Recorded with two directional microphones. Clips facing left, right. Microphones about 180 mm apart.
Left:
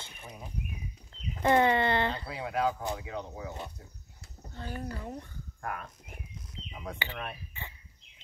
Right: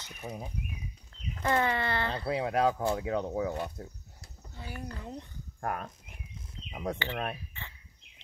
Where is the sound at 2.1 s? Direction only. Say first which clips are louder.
Right 6 dB; 35° right (ahead or behind).